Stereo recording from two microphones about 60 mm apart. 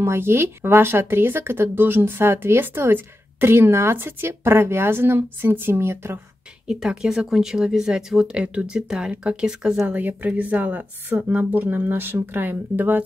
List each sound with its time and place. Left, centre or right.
0.0 s speech: right
6.7 s speech: centre
9.9 s a woman's voice: right